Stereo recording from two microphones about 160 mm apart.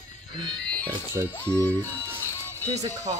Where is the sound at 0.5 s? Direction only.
5° left (ahead or behind).